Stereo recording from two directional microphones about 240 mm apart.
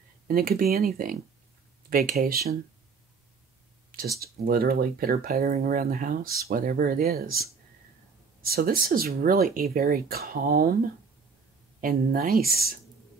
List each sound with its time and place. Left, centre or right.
0.3 s speech: right
4.2 s speech: right
11.8 s speech: right